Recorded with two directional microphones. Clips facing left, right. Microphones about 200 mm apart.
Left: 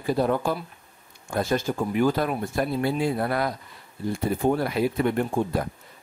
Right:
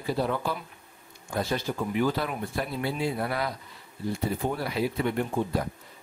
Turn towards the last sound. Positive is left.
turn(degrees=50)  # may be behind; listen again after turning